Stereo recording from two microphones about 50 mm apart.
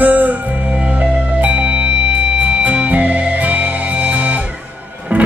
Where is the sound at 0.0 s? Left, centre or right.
Right.